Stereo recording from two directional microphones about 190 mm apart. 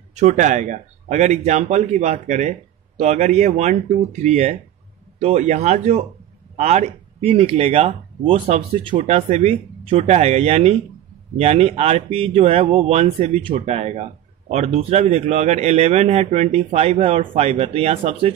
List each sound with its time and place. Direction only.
0.1 s speech: 40° right (ahead or behind)